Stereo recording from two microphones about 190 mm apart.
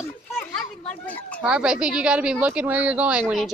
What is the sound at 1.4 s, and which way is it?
Speech, 5° right (ahead or behind).